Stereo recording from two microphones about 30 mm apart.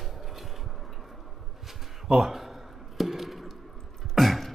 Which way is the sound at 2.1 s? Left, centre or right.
Centre.